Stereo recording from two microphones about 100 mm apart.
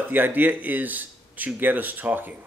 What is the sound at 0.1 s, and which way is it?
Speech, 20° right (ahead or behind).